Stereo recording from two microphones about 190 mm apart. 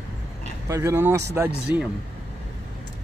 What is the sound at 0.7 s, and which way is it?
Speech, 15° right (ahead or behind).